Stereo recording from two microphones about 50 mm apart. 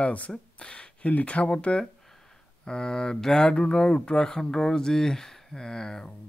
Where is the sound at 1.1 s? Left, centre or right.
Left; by 6.1 s centre.